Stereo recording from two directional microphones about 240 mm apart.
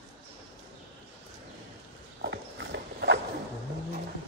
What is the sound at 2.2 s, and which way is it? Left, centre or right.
Clip-clop, right.